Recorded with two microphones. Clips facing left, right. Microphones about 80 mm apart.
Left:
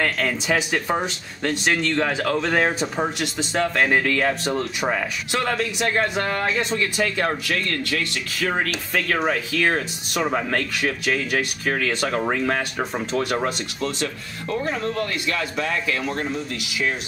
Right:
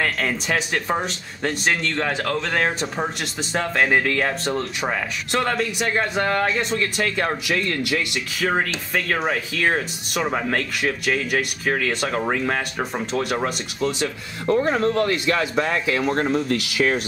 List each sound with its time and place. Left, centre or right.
0.0 s speech: centre
7.4 s speech: centre
14.6 s speech: right
16.1 s speech: right